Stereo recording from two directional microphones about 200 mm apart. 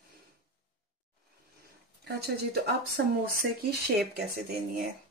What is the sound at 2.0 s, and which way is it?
Speech, 55° right (ahead or behind).